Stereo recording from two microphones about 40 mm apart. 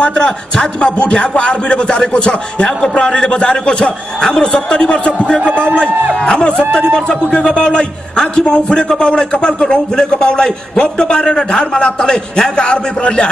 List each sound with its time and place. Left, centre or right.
0.0 s a man's voice: left
5.5 s a man's voice: right
6.2 s a man's voice: left